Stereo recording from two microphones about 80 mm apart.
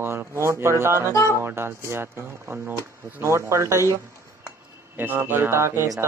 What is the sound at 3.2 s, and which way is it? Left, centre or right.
Speech, right.